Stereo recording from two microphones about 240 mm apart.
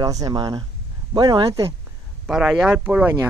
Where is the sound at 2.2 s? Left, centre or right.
Centre.